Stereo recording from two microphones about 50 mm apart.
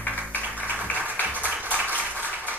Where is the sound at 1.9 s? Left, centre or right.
Right.